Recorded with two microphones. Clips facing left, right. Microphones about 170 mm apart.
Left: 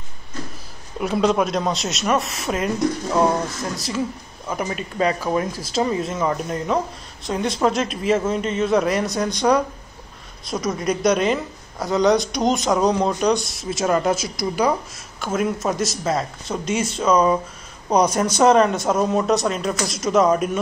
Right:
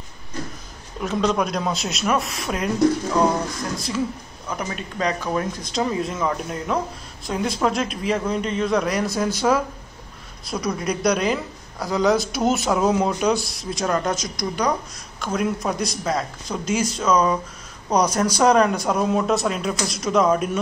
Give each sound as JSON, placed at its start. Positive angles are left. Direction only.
{"t": 1.0, "sound": "speech", "side_deg": 5}
{"t": 3.7, "sound": "speech", "side_deg": 0}
{"t": 18.0, "sound": "speech", "side_deg": 25}
{"t": 18.4, "sound": "speech", "side_deg": 0}